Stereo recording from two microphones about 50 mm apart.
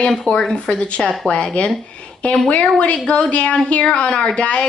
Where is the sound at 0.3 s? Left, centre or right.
Centre.